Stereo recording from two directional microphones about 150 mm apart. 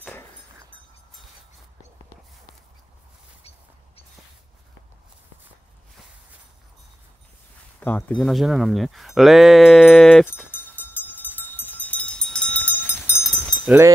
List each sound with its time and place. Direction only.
7.8 s speech: 10° left (ahead or behind)
10.5 s a sound: 15° left (ahead or behind)
13.7 s speech: 15° right (ahead or behind)